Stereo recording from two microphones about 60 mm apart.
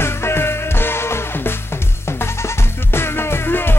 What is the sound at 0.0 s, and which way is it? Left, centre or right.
Music, left.